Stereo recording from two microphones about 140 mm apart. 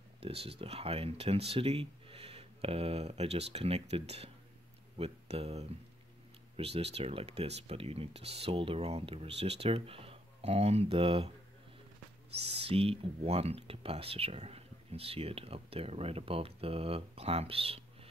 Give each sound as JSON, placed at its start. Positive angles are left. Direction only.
{"t": 0.2, "sound": "speech", "side_deg": -45}
{"t": 12.6, "sound": "speech", "side_deg": -45}